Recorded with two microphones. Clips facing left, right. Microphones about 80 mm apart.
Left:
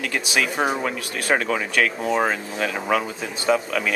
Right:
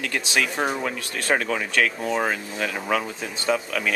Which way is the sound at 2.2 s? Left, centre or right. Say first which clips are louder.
Left 3 dB; left.